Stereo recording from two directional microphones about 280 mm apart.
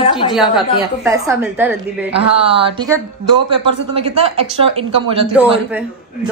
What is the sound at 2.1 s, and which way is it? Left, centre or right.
Speech, right.